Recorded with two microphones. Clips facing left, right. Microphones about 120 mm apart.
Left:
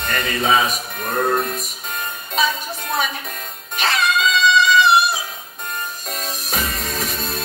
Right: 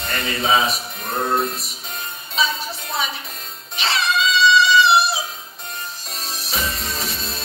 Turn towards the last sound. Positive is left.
turn(degrees=45)  # may be behind; listen again after turning